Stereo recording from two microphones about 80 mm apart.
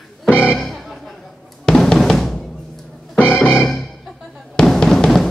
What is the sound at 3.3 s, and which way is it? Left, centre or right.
Music, left.